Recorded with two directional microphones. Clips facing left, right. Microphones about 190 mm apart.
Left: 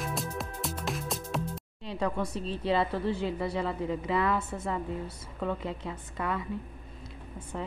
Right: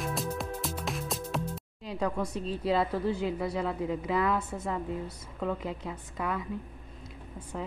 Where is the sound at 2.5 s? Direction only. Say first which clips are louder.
Even; centre (ahead or behind).